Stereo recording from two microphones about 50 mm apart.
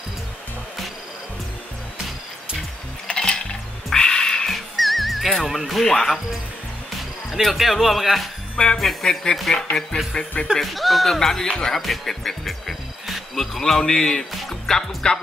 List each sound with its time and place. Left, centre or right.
3.1 s music: centre
4.7 s music: centre
7.2 s a man's voice: centre
14.3 s music: centre